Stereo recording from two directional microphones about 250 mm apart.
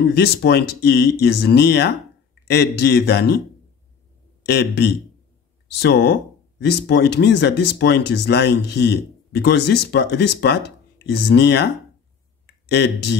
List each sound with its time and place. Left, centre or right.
0.0 s speech: left
4.5 s speech: left